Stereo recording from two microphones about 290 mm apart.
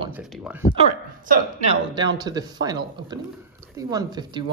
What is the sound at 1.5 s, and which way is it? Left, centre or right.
Speech, centre.